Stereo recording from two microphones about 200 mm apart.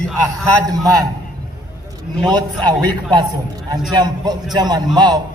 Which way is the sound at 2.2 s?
20° right (ahead or behind).